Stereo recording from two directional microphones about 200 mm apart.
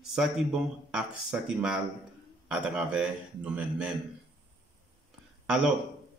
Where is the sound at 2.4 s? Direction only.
5° right (ahead or behind).